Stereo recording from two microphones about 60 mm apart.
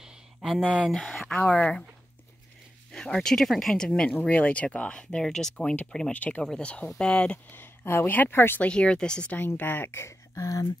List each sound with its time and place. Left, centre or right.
0.0 s a sound: centre
0.9 s speech: centre
1.2 s speech: centre
2.9 s speech: centre
4.1 s speech: left
6.1 s speech: left
6.4 s speech: centre
7.5 s speech: left
8.5 s speech: centre
9.6 s speech: left
9.9 s a sound: left